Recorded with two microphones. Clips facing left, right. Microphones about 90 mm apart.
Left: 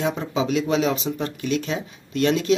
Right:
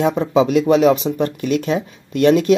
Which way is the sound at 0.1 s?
55° right (ahead or behind).